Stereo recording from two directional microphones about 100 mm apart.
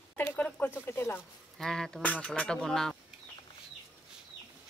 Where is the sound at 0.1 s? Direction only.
20° left (ahead or behind).